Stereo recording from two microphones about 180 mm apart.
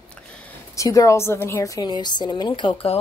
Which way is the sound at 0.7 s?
20° left (ahead or behind).